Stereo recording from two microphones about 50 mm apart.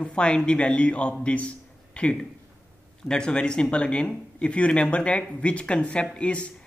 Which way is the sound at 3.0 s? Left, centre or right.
Centre.